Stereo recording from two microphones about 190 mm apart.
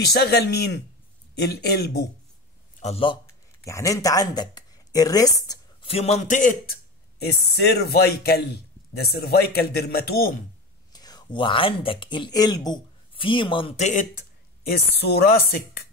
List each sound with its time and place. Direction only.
0.1 s a man's voice: 60° left (ahead or behind)
2.8 s a man's voice: 30° left (ahead or behind)
3.6 s speech: 15° left (ahead or behind); by 6.7 s 40° left (ahead or behind)
7.2 s a man's voice: 60° left (ahead or behind)
10.9 s speech: 20° left (ahead or behind); by 14.0 s 35° left (ahead or behind)
14.7 s speech: 55° left (ahead or behind)